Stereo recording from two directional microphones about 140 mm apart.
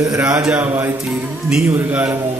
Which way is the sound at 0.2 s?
10° right (ahead or behind).